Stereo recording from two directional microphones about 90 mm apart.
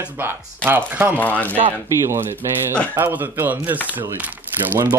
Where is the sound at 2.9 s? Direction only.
20° right (ahead or behind).